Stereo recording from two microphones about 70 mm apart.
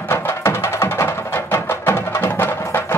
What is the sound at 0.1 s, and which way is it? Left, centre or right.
Music, left.